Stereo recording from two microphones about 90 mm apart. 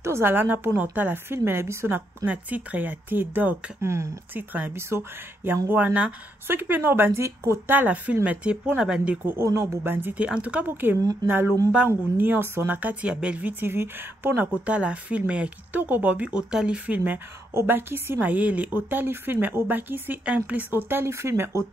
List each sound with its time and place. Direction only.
0.0 s a woman's voice: 25° right (ahead or behind)
3.8 s speech: 30° right (ahead or behind)
4.3 s a woman's voice: 20° right (ahead or behind)
9.8 s a woman's voice: 20° right (ahead or behind)